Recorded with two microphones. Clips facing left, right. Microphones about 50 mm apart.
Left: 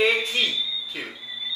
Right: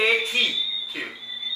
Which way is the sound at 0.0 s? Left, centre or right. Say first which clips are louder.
Even; centre.